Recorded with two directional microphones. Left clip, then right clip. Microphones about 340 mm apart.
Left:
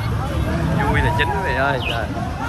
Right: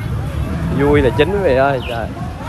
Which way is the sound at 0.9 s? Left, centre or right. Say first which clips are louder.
Right 7 dB; centre.